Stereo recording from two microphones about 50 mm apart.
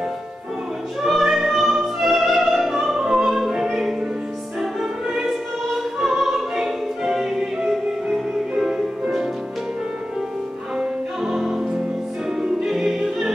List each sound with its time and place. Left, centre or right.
1.0 s music: centre
5.9 s music: centre
11.2 s music: centre